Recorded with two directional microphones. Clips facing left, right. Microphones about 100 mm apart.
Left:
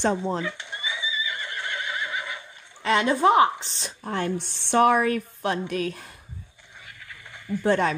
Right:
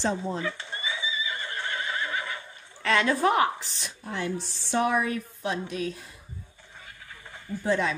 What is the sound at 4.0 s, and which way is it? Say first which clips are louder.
A woman's voice: left 4 dB; 55° left (ahead or behind).